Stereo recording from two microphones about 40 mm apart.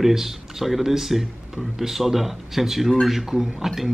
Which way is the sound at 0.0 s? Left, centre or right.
Centre.